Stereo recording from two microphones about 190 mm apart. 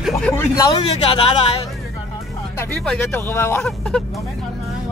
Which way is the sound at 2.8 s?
10° left (ahead or behind).